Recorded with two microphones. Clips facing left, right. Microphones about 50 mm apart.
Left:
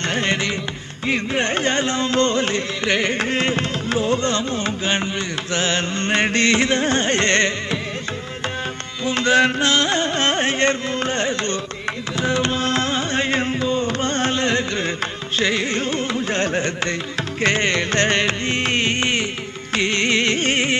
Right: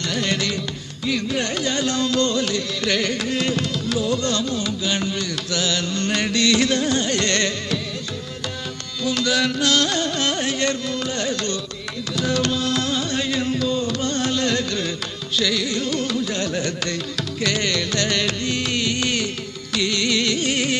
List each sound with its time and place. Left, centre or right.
0.1 s music: left
1.0 s carnatic music: left
9.0 s carnatic music: left
17.4 s music: left